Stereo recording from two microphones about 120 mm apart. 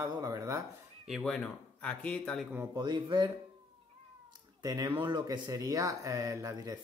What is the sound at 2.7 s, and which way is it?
Speech, 40° right (ahead or behind).